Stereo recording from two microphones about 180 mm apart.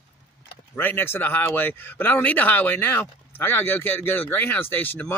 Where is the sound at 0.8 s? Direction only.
10° left (ahead or behind).